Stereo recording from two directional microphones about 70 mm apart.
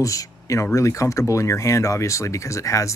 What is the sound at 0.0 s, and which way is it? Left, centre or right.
Speech, left.